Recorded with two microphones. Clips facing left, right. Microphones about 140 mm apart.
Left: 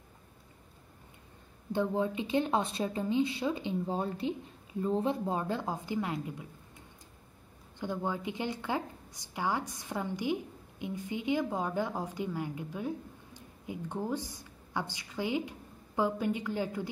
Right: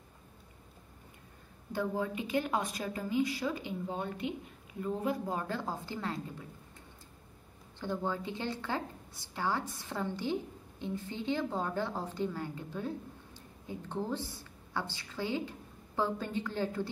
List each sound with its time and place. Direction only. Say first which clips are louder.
1.7 s a woman's voice: left 3 dB; 25° left (ahead or behind)
7.8 s a woman's voice: left 1 dB; 15° left (ahead or behind)